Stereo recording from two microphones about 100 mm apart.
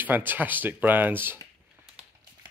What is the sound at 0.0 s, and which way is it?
Speech, 20° right (ahead or behind).